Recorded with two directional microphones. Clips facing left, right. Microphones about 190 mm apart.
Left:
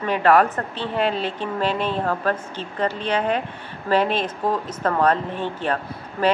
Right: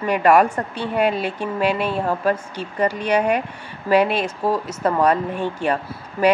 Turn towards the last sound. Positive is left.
turn(degrees=-10)  # may be behind; listen again after turning